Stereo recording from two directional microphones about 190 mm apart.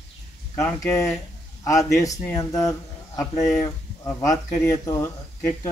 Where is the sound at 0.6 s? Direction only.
15° left (ahead or behind).